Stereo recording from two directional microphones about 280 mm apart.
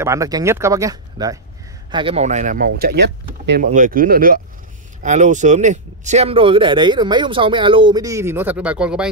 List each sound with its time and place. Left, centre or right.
0.0 s speech: centre